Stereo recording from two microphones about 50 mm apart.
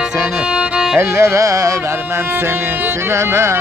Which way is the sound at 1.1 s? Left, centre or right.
Right.